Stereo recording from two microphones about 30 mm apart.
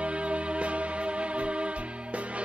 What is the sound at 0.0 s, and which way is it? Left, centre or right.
Music, right.